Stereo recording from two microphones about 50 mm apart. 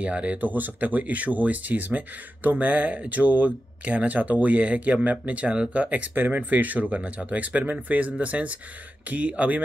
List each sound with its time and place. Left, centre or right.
0.0 s speech: right